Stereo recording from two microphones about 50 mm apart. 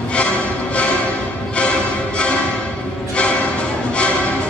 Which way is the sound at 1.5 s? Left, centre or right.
Left.